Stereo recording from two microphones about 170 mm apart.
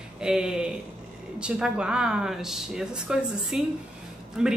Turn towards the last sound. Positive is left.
turn(degrees=-5)  # may be behind; listen again after turning